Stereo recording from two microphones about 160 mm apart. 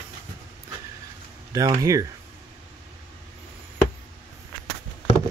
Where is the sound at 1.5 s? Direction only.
20° right (ahead or behind).